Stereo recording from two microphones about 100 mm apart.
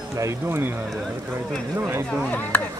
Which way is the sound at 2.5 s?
20° left (ahead or behind).